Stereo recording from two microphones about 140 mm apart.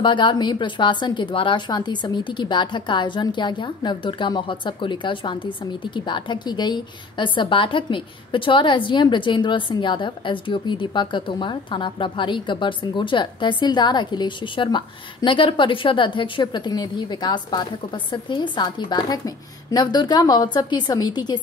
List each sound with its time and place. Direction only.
0.0 s speech: 35° left (ahead or behind)